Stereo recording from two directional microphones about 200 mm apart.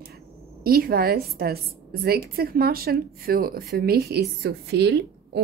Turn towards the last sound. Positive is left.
turn(degrees=-55)  # may be behind; listen again after turning